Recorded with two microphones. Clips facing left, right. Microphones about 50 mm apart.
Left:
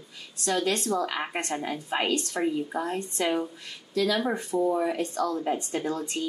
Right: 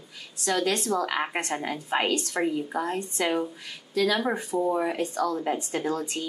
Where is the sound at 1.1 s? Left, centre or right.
Centre.